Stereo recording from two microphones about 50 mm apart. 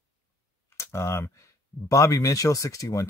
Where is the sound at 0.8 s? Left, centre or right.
Left.